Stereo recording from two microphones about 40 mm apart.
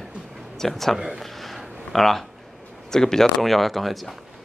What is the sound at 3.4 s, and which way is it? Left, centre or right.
Speech, centre.